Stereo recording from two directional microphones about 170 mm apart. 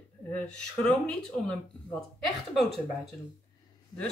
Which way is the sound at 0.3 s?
5° left (ahead or behind).